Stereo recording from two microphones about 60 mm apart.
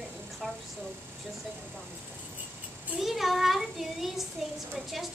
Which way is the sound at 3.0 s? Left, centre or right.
Centre.